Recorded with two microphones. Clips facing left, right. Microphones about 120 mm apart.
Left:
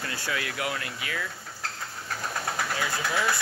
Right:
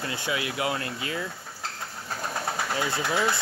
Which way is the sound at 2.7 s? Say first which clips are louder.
Right 4 dB; 25° right (ahead or behind).